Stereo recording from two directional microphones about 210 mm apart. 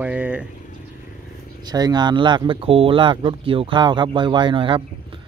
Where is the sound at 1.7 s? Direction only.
20° right (ahead or behind).